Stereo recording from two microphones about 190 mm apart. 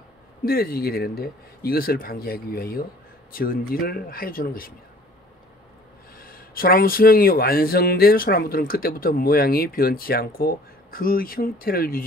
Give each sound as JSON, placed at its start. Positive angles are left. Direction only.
{"t": 0.5, "sound": "speech", "side_deg": 50}
{"t": 6.1, "sound": "speech", "side_deg": 50}